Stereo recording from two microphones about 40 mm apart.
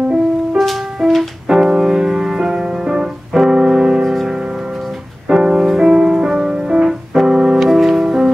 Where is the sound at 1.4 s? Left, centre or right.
Centre.